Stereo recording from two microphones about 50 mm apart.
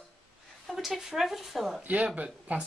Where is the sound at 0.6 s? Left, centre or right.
Centre.